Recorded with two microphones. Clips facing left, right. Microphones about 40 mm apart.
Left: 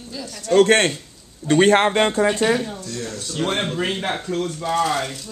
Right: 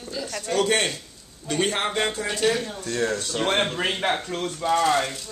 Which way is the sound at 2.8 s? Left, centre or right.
Right.